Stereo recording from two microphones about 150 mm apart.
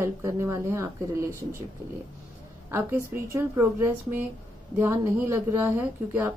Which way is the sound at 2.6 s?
15° right (ahead or behind).